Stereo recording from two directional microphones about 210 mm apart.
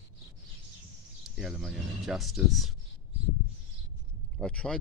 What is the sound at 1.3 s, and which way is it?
Speech, centre (ahead or behind).